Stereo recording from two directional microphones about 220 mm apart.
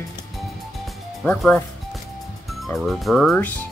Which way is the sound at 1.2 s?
5° left (ahead or behind).